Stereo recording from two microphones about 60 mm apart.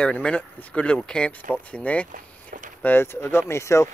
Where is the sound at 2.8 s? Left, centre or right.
Left.